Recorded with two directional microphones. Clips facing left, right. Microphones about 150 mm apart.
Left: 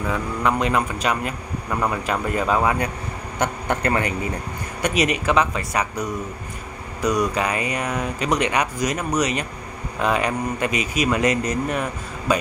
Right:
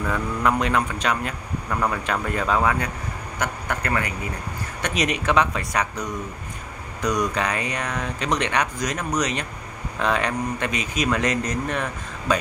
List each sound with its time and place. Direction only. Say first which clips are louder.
0.0 s a man's voice: even; 5° left (ahead or behind); by 4.1 s 25° left (ahead or behind)
4.8 s a man's voice: left 3 dB; 5° left (ahead or behind)